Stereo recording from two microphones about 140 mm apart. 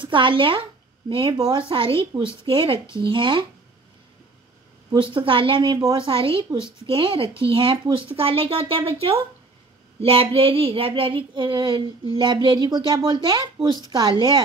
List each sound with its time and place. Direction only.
0.0 s a woman's voice: 35° right (ahead or behind)
1.7 s child singing: 35° right (ahead or behind)
4.9 s child singing: 35° right (ahead or behind)
7.4 s speech: 40° right (ahead or behind)
10.0 s child singing: 45° right (ahead or behind)